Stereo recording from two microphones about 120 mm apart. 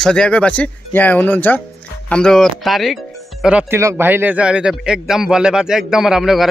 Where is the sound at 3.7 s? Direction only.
20° right (ahead or behind).